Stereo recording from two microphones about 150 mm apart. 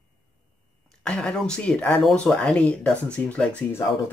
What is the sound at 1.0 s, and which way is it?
Speech, 5° left (ahead or behind).